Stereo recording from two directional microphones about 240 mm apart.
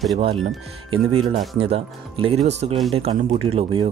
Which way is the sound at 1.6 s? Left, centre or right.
Right.